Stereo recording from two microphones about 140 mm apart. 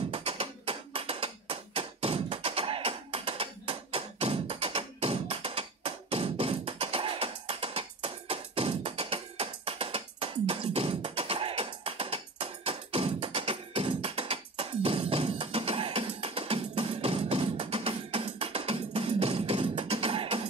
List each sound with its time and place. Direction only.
0.1 s tap: 40° right (ahead or behind)